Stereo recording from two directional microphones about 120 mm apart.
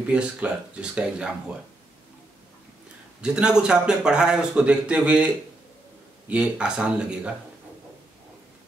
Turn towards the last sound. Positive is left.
turn(degrees=-10)  # may be behind; listen again after turning